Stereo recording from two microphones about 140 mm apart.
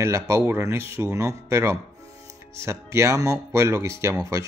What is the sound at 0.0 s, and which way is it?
Speech, 20° right (ahead or behind).